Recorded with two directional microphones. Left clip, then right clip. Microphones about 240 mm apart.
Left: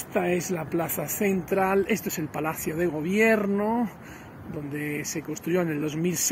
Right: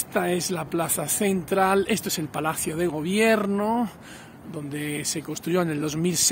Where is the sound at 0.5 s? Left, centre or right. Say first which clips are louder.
Right 2 dB; centre.